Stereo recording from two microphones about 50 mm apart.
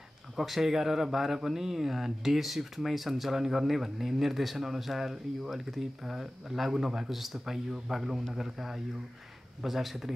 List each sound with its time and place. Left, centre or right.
0.4 s speech: centre